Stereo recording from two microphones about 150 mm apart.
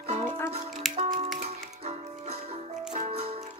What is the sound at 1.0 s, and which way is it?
Music, 45° right (ahead or behind).